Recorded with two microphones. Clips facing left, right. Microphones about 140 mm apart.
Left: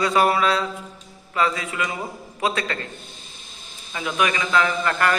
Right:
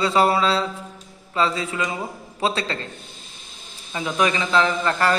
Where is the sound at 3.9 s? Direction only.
30° right (ahead or behind).